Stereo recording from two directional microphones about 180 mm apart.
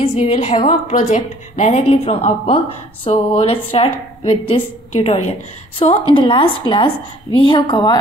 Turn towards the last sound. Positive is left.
turn(degrees=25)  # may be behind; listen again after turning